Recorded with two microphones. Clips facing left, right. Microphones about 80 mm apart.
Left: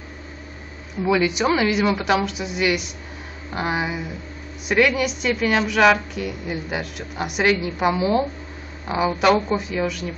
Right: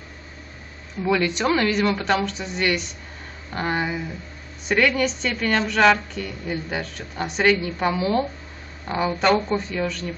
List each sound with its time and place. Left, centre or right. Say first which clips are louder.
1.0 s a woman's voice: left 2 dB; centre